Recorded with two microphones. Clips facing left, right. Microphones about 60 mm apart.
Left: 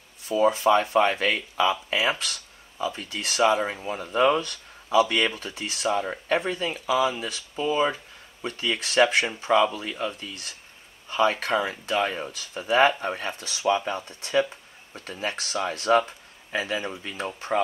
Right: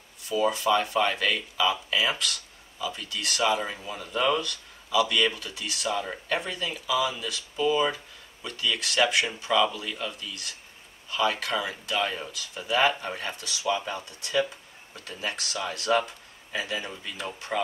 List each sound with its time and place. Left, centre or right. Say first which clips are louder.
0.3 s speech: left 4 dB; left